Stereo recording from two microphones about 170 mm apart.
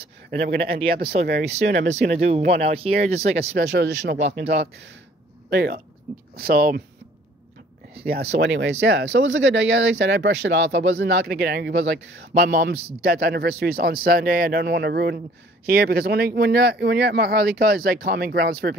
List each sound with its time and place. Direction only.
0.3 s speech: 70° right (ahead or behind)
1.2 s speech: 45° right (ahead or behind)
3.5 s speech: 80° right
5.5 s speech: 65° right (ahead or behind)
7.9 s a sound: 65° right (ahead or behind)
8.4 s speech: 85° right; by 11.7 s 70° right (ahead or behind)
12.4 s speech: 60° right (ahead or behind)